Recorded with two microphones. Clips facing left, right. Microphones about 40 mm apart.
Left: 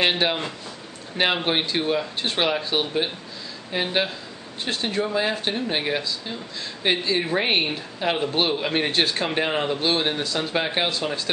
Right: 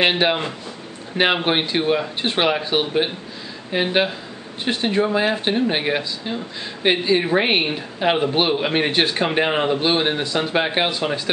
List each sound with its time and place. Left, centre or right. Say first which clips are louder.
0.0 s speech: right 4 dB; centre